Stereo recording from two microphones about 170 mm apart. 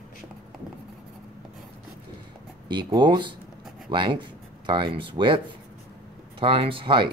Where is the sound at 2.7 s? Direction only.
25° right (ahead or behind).